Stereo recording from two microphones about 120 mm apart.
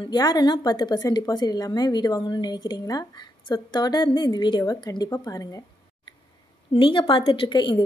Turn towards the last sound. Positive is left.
turn(degrees=40)  # may be behind; listen again after turning